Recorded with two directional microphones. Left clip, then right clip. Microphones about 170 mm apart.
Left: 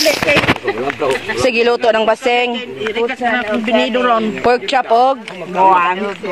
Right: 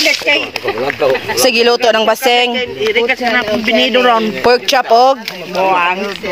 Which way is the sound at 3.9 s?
50° left (ahead or behind).